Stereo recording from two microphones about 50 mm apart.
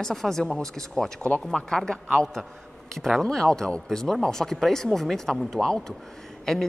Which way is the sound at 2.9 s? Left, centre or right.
Centre.